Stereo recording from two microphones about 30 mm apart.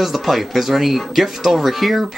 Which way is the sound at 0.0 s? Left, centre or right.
Centre.